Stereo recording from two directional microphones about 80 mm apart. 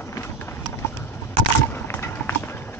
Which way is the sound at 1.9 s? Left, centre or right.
Left.